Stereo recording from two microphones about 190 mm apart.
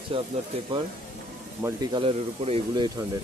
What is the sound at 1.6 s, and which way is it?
Speech, 25° right (ahead or behind).